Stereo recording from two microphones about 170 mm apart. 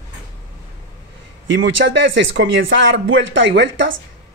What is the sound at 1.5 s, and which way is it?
A woman's voice, 90° right.